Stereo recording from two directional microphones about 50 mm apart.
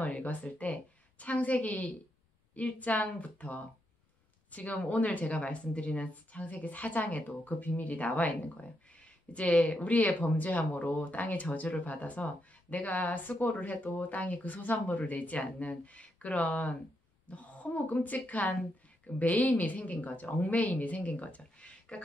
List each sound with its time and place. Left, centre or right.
0.0 s speech: left
18.5 s a sound: centre
19.1 s speech: left